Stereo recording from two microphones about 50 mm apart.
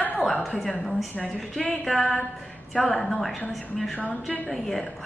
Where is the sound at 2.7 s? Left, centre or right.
Centre.